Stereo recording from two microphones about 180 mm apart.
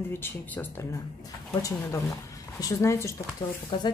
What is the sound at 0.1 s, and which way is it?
Speech, 10° left (ahead or behind).